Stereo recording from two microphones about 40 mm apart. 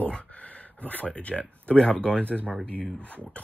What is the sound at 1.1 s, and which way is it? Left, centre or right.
Speech, left.